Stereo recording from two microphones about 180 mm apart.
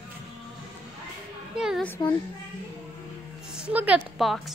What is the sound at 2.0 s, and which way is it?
Speech, 20° left (ahead or behind).